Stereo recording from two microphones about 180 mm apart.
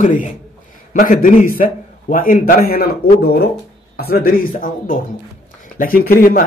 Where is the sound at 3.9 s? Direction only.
55° left (ahead or behind).